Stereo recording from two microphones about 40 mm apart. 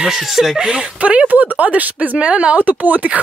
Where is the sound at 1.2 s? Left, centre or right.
Right.